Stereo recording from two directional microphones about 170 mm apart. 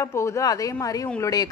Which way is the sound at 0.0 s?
15° left (ahead or behind).